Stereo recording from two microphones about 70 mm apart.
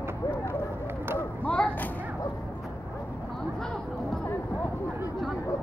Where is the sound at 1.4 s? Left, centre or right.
Centre.